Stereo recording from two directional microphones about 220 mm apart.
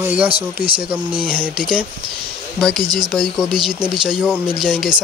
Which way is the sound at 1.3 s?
5° right (ahead or behind).